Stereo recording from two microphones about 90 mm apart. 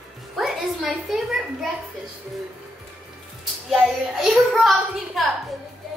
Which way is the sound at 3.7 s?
5° right (ahead or behind).